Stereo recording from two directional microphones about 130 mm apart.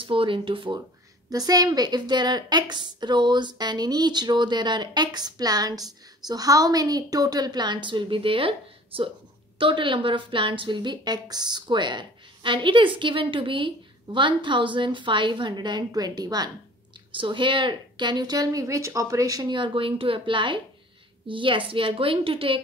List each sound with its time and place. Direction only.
0.0 s a woman's voice: 40° right (ahead or behind)
1.3 s a woman's voice: 30° right (ahead or behind); by 22.6 s 45° right (ahead or behind)